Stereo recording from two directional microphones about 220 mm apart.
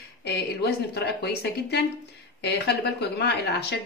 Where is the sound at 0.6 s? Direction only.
50° left (ahead or behind).